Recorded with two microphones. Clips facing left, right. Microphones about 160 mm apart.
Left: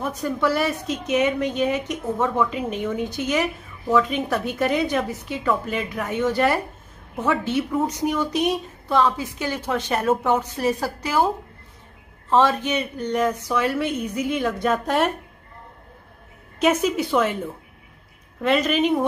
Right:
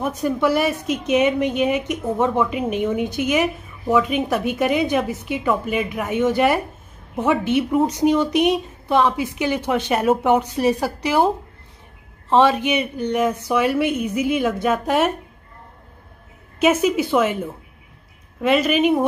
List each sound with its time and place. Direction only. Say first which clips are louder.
0.0 s speech: right 3 dB; 15° right (ahead or behind)
12.3 s speech: right 3 dB; 15° right (ahead or behind)
16.5 s a woman's voice: right 3 dB; 5° right (ahead or behind)